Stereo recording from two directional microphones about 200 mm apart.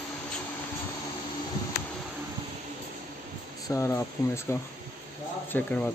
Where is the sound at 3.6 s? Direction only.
15° left (ahead or behind).